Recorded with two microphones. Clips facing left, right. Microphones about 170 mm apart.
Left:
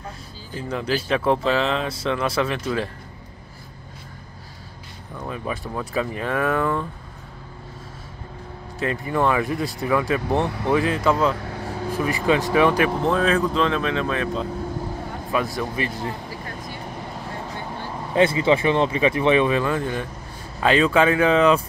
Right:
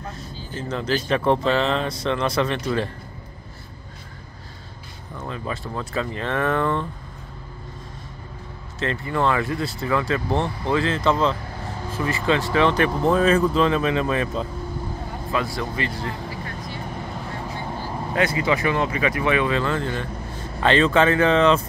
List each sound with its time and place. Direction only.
0.6 s speech: 10° left (ahead or behind)
5.3 s speech: 15° left (ahead or behind)
8.7 s speech: 15° left (ahead or behind)
13.0 s speech: centre (ahead or behind)
15.3 s speech: 15° left (ahead or behind)
18.1 s speech: 25° left (ahead or behind); by 21.6 s 10° left (ahead or behind)